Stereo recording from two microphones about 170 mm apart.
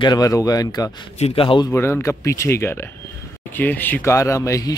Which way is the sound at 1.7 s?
15° left (ahead or behind).